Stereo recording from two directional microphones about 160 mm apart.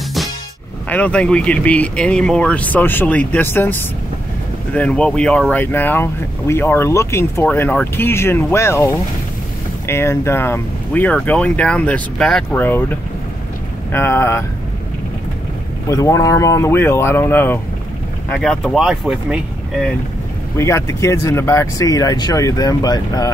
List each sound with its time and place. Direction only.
0.8 s speech: 10° left (ahead or behind)
13.9 s speech: 15° left (ahead or behind)
15.9 s speech: 20° left (ahead or behind); by 19.9 s 5° right (ahead or behind)
20.5 s speech: 15° left (ahead or behind)